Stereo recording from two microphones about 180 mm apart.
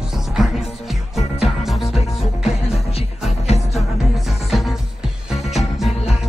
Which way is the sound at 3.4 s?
35° left (ahead or behind).